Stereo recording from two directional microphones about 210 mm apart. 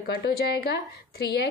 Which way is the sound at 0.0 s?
45° left (ahead or behind).